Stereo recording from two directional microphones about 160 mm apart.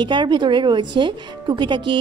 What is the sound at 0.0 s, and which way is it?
Speech, 30° right (ahead or behind).